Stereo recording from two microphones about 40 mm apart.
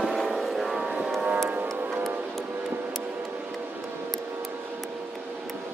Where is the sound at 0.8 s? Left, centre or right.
Centre.